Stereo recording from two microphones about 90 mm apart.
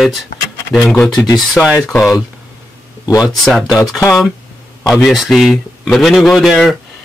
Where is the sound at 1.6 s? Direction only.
20° left (ahead or behind).